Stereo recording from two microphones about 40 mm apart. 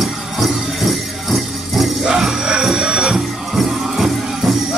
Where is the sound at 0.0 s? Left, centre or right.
Centre.